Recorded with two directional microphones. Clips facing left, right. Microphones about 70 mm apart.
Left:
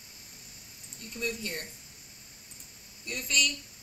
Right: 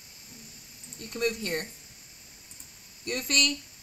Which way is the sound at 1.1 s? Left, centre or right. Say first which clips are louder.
Right 6 dB; right.